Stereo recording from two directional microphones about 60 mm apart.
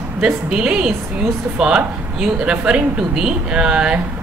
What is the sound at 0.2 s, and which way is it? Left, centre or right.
Speech, centre.